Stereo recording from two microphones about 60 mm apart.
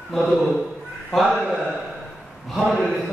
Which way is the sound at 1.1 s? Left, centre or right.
Centre.